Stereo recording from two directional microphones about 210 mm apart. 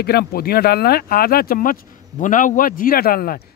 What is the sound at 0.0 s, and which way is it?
Speech, 50° left (ahead or behind).